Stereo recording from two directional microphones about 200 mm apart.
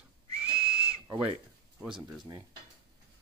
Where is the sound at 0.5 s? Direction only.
30° right (ahead or behind).